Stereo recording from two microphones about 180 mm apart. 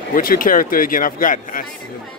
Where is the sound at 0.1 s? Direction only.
50° left (ahead or behind).